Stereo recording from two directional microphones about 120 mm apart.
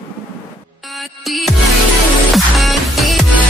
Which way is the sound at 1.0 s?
Centre (ahead or behind).